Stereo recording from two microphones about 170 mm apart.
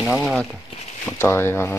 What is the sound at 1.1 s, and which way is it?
Speech, 15° left (ahead or behind).